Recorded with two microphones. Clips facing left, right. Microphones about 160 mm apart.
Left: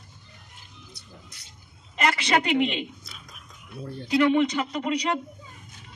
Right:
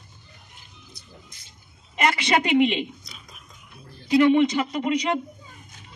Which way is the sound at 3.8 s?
65° left (ahead or behind).